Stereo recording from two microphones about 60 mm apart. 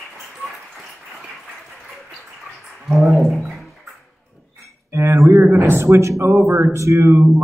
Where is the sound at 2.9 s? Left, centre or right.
Centre.